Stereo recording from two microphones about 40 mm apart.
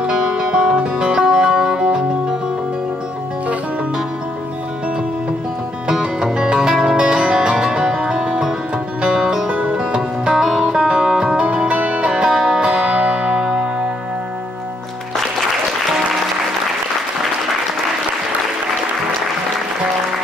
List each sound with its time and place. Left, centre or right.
0.0 s music: centre
6.3 s music: right
6.7 s music: centre
7.0 s music: right
9.5 s music: right
10.3 s music: centre
10.8 s music: right
12.1 s music: centre